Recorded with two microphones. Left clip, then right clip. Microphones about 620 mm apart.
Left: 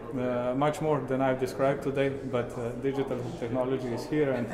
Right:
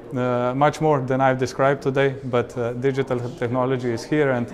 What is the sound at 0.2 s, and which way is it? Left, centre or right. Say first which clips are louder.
Speech: right 8 dB; right.